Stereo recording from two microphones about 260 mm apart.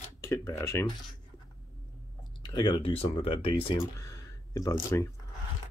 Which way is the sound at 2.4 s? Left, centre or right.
Centre.